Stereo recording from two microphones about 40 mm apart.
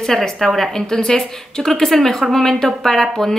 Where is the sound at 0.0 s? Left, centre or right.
Centre.